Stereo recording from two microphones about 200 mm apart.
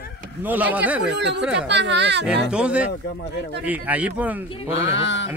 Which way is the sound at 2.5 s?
5° right (ahead or behind).